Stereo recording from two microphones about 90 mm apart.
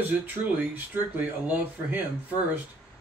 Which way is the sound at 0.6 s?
20° right (ahead or behind).